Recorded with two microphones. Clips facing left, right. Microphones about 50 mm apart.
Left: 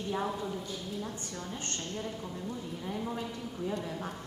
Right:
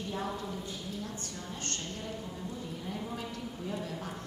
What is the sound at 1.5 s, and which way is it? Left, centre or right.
Speech, centre.